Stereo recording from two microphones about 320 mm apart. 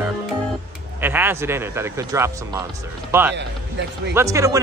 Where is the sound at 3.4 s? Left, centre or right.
Right.